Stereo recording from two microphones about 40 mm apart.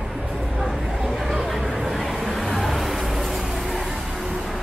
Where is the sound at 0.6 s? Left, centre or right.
Centre.